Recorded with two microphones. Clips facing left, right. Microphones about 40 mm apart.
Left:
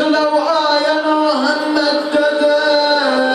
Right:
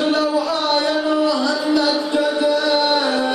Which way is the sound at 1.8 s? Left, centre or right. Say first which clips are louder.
Left 4 dB; centre.